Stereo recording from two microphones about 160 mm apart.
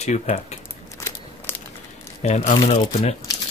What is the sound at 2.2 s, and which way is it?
Speech, 40° left (ahead or behind).